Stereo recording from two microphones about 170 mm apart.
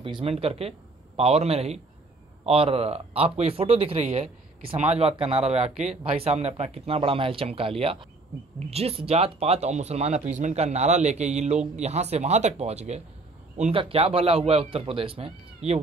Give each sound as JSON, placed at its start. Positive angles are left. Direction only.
{"t": 0.0, "sound": "speech", "side_deg": -35}